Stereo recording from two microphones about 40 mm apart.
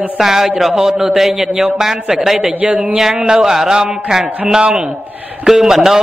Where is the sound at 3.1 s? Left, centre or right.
Centre.